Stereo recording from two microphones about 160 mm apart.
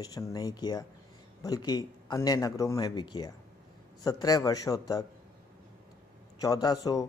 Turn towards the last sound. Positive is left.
turn(degrees=25)  # may be behind; listen again after turning